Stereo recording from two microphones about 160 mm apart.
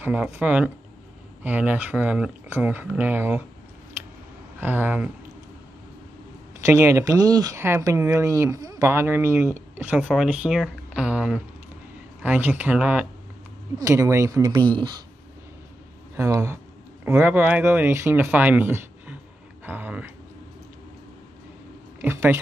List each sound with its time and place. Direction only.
0.0 s speech: 10° right (ahead or behind)
4.6 s speech: 10° right (ahead or behind)
6.6 s speech: 15° right (ahead or behind)
16.2 s speech: 15° right (ahead or behind)
22.0 s speech: 15° right (ahead or behind)